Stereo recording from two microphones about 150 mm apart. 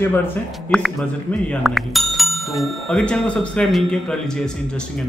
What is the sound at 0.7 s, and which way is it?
Speech, centre (ahead or behind).